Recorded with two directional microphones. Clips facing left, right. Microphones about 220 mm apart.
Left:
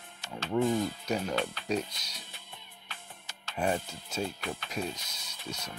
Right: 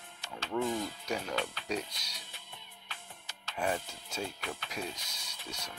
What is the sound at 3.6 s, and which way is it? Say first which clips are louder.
Speech: left 3 dB; 25° left (ahead or behind).